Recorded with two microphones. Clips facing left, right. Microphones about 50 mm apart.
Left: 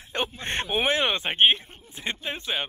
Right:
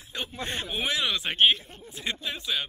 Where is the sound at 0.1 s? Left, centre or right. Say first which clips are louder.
Left 4 dB; left.